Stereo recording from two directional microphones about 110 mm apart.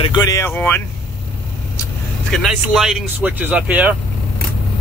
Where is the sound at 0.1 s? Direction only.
35° left (ahead or behind).